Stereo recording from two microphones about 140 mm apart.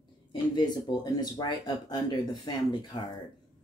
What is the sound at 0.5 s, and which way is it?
Speech, 30° left (ahead or behind).